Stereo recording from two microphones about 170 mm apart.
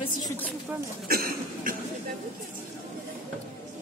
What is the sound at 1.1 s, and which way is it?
Cough, 60° right (ahead or behind).